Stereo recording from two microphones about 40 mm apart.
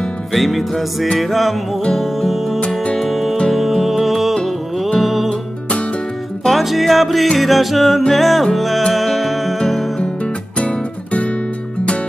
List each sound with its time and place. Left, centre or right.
0.3 s music: centre
4.4 s music: centre
5.0 s music: centre
6.4 s music: centre
10.6 s music: left